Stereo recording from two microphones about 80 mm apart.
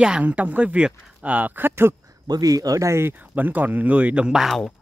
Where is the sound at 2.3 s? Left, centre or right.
Right.